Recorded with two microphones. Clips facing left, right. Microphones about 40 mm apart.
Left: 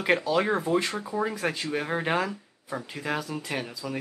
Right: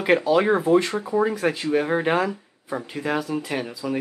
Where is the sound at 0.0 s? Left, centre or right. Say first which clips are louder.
Right 5 dB; centre.